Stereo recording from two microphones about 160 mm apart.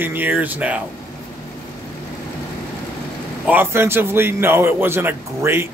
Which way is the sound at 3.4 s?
15° right (ahead or behind).